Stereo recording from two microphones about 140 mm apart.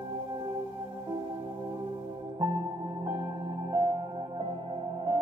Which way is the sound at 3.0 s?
30° right (ahead or behind).